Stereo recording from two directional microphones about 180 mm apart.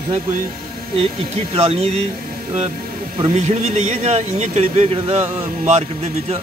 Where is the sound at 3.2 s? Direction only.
35° right (ahead or behind).